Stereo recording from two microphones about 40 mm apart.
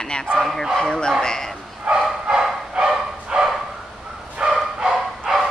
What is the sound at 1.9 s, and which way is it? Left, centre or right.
Bow-wow, right.